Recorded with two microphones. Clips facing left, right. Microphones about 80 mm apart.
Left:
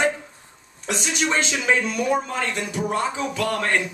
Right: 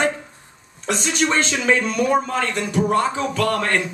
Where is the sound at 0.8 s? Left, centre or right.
Centre.